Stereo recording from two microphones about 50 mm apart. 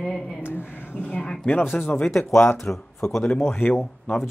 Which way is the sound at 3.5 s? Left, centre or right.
Left.